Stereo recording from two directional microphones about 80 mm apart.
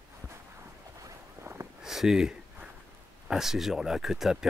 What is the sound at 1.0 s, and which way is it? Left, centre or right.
Boat, right.